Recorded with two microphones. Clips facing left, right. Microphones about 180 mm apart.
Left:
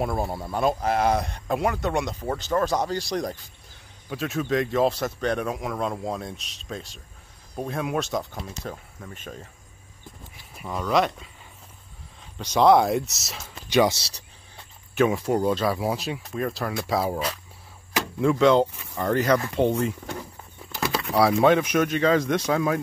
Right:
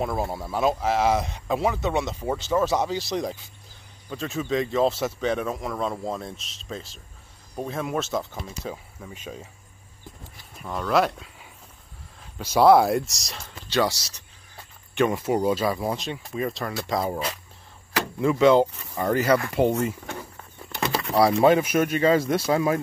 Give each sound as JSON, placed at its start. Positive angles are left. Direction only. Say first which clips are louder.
{"t": 0.0, "sound": "speech", "louder": "even", "side_deg": 0}
{"t": 10.6, "sound": "speech", "louder": "even", "side_deg": 0}
{"t": 13.7, "sound": "speech", "louder": "left 3 dB", "side_deg": 20}
{"t": 15.0, "sound": "speech", "louder": "left 1 dB", "side_deg": 0}